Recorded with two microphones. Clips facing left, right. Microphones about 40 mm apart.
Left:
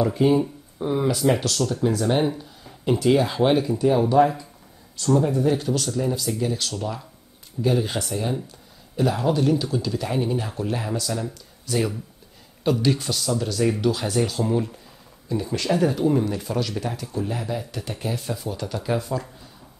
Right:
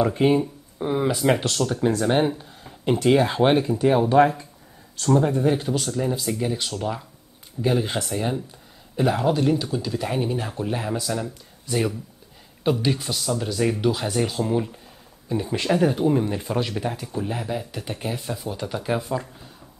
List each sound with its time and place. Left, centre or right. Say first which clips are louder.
0.0 s speech: even; right
0.4 s speech: left 1 dB; centre
1.2 s speech: even; right
4.2 s speech: right 1 dB; right
5.1 s speech: even; right; by 14.7 s centre
15.2 s speech: right 1 dB; right